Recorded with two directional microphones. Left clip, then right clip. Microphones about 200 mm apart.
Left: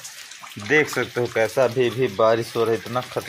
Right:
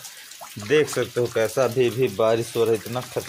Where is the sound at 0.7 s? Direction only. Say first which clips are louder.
Left 1 dB; centre (ahead or behind).